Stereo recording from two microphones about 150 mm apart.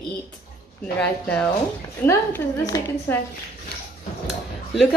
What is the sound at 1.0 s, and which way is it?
A woman's voice, 5° left (ahead or behind).